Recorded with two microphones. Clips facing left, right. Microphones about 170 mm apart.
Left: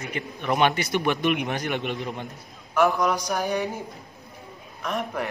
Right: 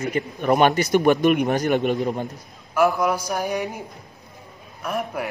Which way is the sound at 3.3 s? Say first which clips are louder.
Right 1 dB; 10° right (ahead or behind).